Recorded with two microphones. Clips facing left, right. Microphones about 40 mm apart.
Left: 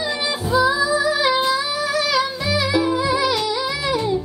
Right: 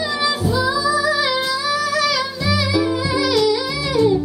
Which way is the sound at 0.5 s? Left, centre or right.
Left.